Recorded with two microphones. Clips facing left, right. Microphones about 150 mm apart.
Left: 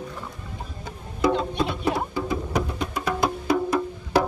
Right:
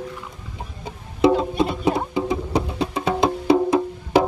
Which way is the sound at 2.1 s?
25° right (ahead or behind).